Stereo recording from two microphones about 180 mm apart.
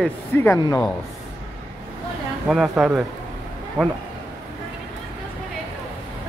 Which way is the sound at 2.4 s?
5° right (ahead or behind).